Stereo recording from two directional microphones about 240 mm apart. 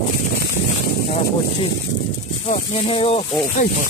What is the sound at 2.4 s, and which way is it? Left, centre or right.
Speech, left.